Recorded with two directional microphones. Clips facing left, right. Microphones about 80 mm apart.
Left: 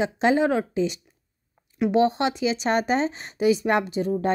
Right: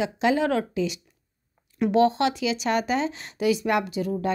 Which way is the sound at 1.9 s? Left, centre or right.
Left.